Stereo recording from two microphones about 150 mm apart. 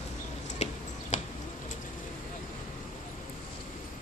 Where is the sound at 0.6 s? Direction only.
50° left (ahead or behind).